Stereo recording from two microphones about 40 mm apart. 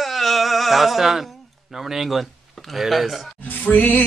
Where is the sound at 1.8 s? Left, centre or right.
Centre.